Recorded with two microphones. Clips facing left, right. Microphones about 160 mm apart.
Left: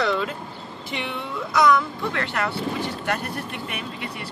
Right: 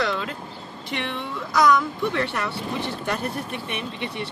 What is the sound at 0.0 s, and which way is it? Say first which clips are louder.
Vehicle: left 2 dB; centre (ahead or behind).